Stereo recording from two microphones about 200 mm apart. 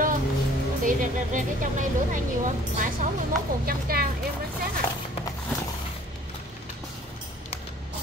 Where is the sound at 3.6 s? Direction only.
50° right (ahead or behind).